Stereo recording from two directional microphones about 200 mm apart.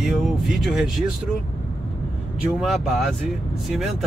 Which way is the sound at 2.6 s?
Centre (ahead or behind).